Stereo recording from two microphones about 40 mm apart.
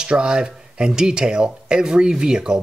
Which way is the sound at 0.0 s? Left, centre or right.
Right.